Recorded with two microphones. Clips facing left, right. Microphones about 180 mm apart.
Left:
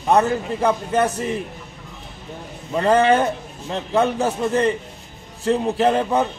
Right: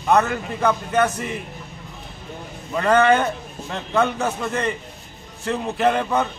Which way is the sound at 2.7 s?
30° left (ahead or behind).